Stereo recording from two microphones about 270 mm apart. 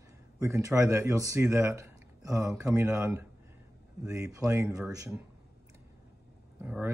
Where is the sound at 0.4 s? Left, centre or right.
Centre.